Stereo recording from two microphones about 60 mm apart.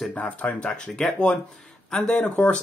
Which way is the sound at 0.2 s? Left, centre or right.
Left.